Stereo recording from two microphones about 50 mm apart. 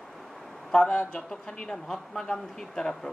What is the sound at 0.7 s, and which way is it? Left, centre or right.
Speech, centre.